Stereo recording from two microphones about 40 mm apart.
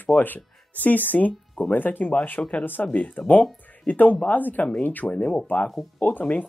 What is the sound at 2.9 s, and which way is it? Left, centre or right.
Speech, left.